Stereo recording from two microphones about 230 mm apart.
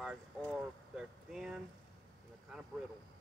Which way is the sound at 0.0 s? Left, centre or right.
Centre.